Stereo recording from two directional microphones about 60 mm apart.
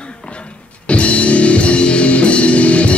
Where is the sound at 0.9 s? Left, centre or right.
Left.